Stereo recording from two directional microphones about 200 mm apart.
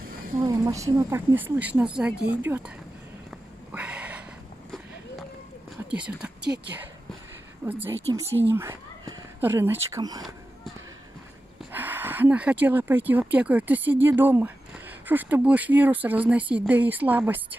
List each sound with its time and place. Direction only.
0.5 s speech: 15° right (ahead or behind)
3.3 s a sound: 5° right (ahead or behind)
5.9 s speech: 5° right (ahead or behind)
7.6 s speech: 10° right (ahead or behind)
11.7 s speech: 10° right (ahead or behind)